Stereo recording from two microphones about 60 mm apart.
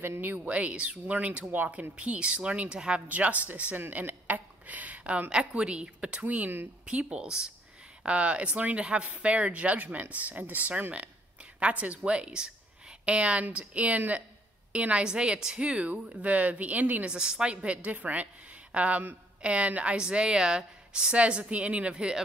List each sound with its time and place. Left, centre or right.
0.0 s speech: right
0.5 s a woman's voice: right
6.9 s a woman's voice: centre
17.1 s a woman's voice: centre